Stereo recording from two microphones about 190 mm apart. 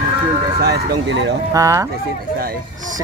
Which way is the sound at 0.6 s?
65° right (ahead or behind).